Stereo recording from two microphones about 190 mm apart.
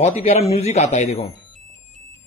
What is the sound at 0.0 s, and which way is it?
Speech, 35° left (ahead or behind).